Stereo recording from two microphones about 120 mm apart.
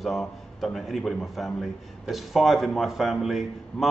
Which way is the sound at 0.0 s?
Centre (ahead or behind).